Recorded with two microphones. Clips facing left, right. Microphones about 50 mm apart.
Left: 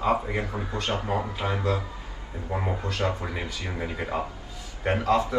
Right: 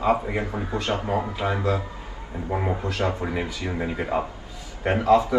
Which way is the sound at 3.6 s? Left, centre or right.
Right.